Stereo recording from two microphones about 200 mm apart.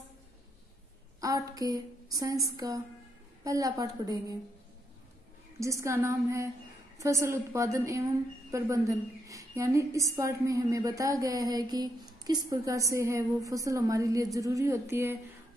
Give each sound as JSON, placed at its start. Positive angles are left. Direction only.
{"t": 1.2, "sound": "a woman's voice", "side_deg": -15}
{"t": 5.6, "sound": "a woman's voice", "side_deg": -15}